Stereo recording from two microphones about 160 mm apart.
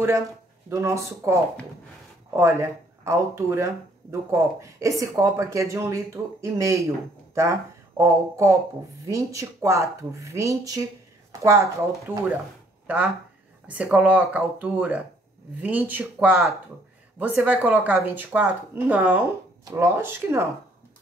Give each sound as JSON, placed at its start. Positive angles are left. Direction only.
{"t": 0.7, "sound": "speech", "side_deg": -20}
{"t": 8.0, "sound": "speech", "side_deg": -20}
{"t": 13.7, "sound": "speech", "side_deg": -10}